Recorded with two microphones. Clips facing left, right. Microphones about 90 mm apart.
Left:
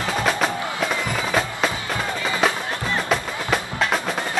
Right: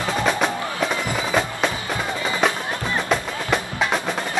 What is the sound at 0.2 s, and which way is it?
Music, centre (ahead or behind).